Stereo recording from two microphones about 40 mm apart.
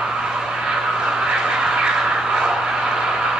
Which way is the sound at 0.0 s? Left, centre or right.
Centre.